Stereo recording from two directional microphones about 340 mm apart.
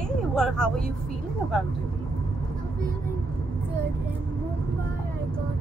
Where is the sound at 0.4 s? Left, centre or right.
Centre.